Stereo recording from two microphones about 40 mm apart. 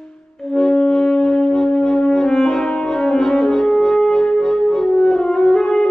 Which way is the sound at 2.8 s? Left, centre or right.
Centre.